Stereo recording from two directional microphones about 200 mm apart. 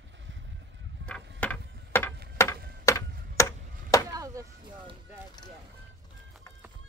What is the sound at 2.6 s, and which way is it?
Tick-tock, 50° right (ahead or behind).